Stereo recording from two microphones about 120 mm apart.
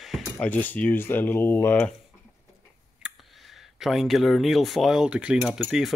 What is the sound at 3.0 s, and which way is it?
Speech, centre (ahead or behind).